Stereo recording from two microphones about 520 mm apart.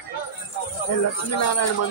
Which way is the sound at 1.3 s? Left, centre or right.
Left.